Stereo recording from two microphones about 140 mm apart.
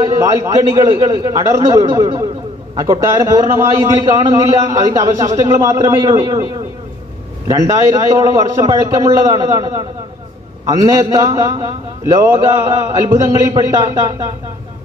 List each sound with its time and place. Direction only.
0.1 s a man's voice: 20° right (ahead or behind)
7.4 s a man's voice: 25° right (ahead or behind)